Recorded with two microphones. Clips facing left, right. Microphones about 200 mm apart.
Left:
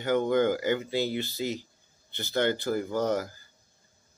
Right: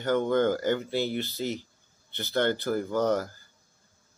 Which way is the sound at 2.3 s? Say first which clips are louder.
Even; 15° left (ahead or behind).